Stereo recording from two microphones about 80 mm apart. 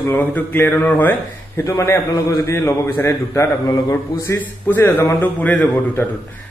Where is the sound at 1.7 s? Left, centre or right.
Left.